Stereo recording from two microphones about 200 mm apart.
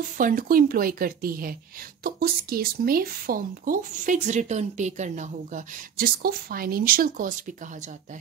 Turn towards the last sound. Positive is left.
turn(degrees=-40)  # may be behind; listen again after turning